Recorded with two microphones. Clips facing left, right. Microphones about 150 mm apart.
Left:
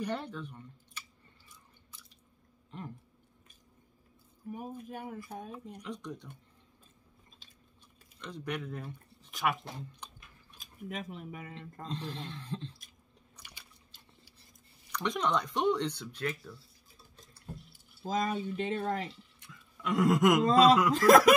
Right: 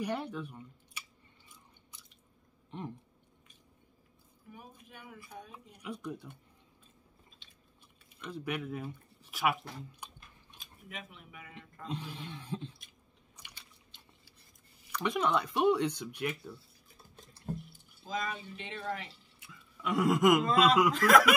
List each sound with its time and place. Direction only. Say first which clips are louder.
0.0 s speech: right 1 dB; 10° right (ahead or behind)
4.5 s speech: left 12 dB; 45° left (ahead or behind)
5.8 s speech: right 5 dB; 10° right (ahead or behind)
7.4 s biting: left 2 dB; 40° left (ahead or behind)
8.2 s speech: right 1 dB; 5° right (ahead or behind)
10.0 s chewing: even; 10° right (ahead or behind)
10.6 s speech: left 7 dB; 40° left (ahead or behind)
11.9 s speech: left 1 dB; 10° right (ahead or behind)
15.0 s speech: right 1 dB; 5° right (ahead or behind)
18.0 s speech: left 6 dB; 40° left (ahead or behind)
19.4 s a sound: even; 5° right (ahead or behind)
20.4 s speech: left 3 dB; 35° left (ahead or behind)